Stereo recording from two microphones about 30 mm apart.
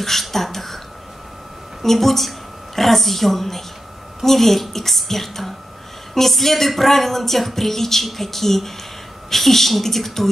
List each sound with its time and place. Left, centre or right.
0.0 s a woman's voice: centre
1.8 s a woman's voice: centre